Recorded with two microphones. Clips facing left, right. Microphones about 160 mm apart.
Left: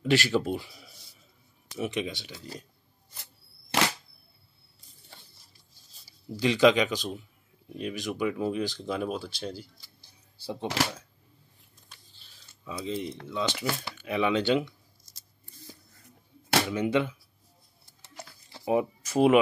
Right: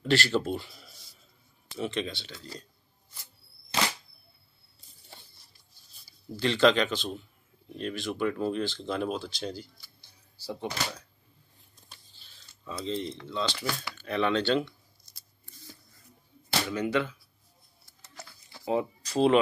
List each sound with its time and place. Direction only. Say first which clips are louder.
0.0 s speech: left 1 dB; 10° left (ahead or behind)
0.5 s speech: left 1 dB; 5° left (ahead or behind)
1.7 s speech: left 1 dB; 15° left (ahead or behind)
6.3 s speech: left 2 dB; 10° left (ahead or behind)
10.4 s speech: left 1 dB; 25° left (ahead or behind)
12.8 s speech: even; 10° left (ahead or behind)
16.6 s speech: left 2 dB; 20° left (ahead or behind)
18.0 s a sound: left 2 dB; 25° left (ahead or behind)
18.7 s speech: left 3 dB; 15° left (ahead or behind)